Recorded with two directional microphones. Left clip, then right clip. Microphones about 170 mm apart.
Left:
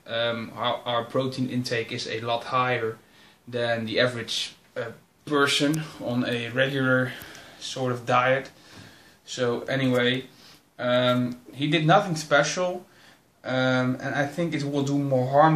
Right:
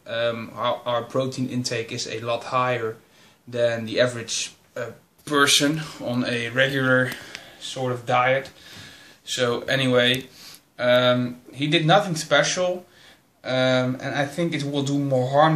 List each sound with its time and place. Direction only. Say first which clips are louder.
0.0 s speech: right 2 dB; 5° right (ahead or behind)